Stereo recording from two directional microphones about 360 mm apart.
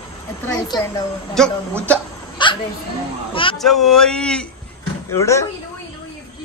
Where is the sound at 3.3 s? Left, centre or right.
Centre.